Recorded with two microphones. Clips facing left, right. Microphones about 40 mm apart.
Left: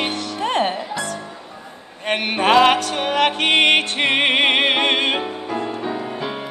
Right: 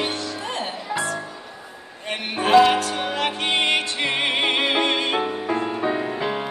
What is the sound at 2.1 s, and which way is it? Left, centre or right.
Music, left.